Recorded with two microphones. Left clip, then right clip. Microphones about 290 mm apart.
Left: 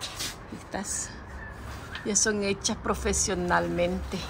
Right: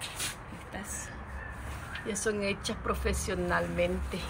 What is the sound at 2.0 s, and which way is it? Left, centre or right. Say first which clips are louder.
A woman's voice: left 5 dB; centre.